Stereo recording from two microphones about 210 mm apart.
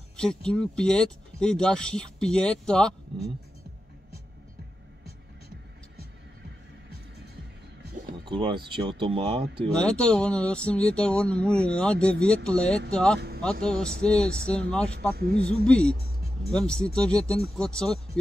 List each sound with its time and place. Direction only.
0.2 s speech: 5° left (ahead or behind)
8.3 s speech: 25° right (ahead or behind)
9.8 s speech: 5° left (ahead or behind)
15.1 s speech: 45° right (ahead or behind)
15.4 s speech: 5° left (ahead or behind)